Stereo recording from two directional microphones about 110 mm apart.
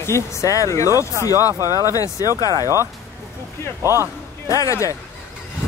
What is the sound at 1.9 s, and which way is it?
Speech, 30° left (ahead or behind).